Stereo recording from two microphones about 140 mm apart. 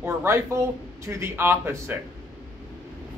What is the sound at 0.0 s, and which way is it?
Speech, 20° right (ahead or behind).